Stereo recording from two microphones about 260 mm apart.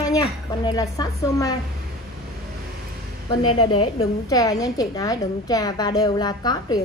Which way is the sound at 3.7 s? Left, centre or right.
Left.